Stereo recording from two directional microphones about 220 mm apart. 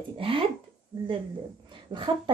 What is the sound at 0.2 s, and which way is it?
A woman's voice, 25° right (ahead or behind).